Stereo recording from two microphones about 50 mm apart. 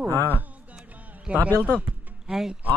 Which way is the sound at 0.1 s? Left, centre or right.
Left.